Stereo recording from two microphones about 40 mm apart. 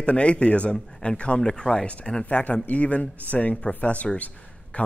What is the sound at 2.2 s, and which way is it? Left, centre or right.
Speech, left.